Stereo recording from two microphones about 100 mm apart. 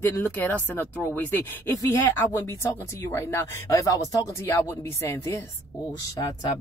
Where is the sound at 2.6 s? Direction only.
25° left (ahead or behind).